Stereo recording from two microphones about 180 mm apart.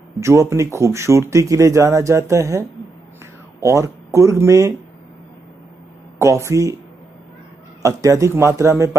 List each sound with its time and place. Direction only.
0.2 s speech: 15° right (ahead or behind)
3.6 s speech: 15° right (ahead or behind)
6.1 s speech: 15° right (ahead or behind)
7.8 s speech: 15° right (ahead or behind)